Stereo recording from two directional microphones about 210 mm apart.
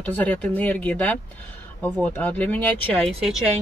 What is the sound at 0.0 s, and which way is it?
Speech, 10° left (ahead or behind).